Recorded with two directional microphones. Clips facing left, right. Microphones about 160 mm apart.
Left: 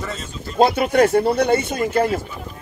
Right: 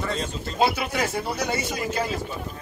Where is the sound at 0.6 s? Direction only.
55° left (ahead or behind).